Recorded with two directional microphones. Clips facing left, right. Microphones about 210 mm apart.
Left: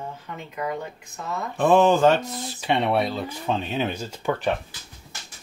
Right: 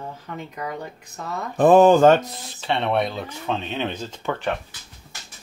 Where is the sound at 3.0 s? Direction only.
Centre (ahead or behind).